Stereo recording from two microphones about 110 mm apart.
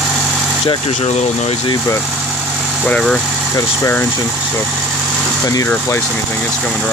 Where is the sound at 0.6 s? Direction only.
65° left (ahead or behind).